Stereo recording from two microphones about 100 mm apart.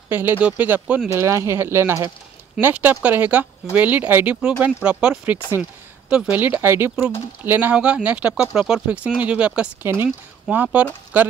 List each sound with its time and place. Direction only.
0.1 s speech: 20° right (ahead or behind)
1.1 s speech: 30° right (ahead or behind)